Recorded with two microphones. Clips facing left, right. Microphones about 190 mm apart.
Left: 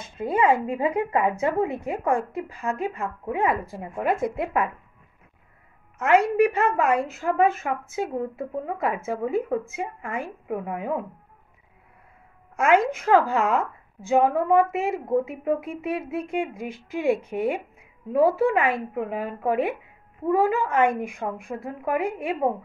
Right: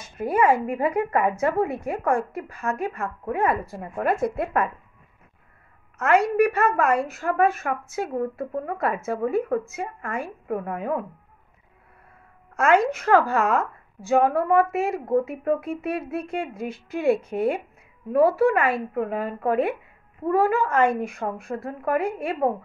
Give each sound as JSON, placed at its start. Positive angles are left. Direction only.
{"t": 0.2, "sound": "speech", "side_deg": 20}
{"t": 2.4, "sound": "a woman's voice", "side_deg": 15}
{"t": 5.9, "sound": "a woman's voice", "side_deg": 15}
{"t": 12.5, "sound": "a woman's voice", "side_deg": 15}